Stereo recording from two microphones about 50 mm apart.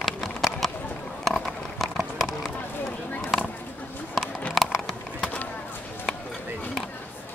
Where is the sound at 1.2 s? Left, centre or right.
Centre.